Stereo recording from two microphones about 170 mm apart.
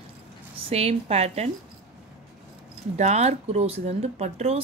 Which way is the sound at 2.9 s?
40° right (ahead or behind).